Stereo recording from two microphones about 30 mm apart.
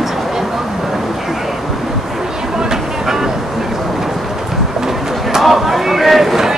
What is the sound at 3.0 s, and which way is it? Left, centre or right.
Vehicle, centre.